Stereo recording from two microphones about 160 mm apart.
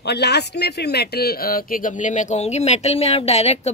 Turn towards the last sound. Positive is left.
turn(degrees=40)  # may be behind; listen again after turning